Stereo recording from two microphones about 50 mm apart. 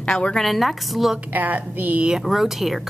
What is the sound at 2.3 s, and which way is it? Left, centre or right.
Speech, centre.